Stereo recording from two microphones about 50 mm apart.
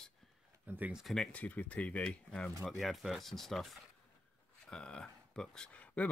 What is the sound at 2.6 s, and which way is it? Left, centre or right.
Speech, centre.